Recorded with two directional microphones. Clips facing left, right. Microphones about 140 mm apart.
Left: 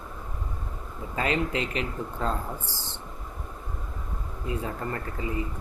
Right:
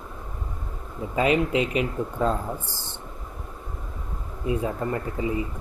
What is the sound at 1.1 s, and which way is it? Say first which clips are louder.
Speech: right 6 dB; 15° right (ahead or behind).